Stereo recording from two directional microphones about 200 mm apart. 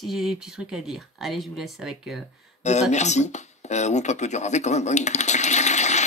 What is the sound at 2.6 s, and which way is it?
Speech, 35° left (ahead or behind).